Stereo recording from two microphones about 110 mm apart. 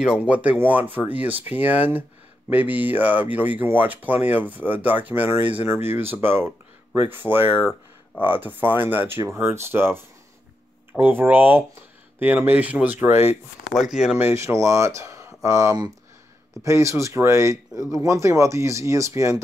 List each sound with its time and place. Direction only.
0.0 s speech: 10° right (ahead or behind)
13.7 s speech: 5° right (ahead or behind)
14.1 s speech: 25° right (ahead or behind)